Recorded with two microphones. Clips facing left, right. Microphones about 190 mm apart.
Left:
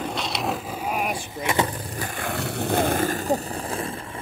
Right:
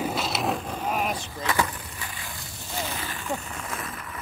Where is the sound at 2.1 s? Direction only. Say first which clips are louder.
Left 14 dB; 65° left (ahead or behind).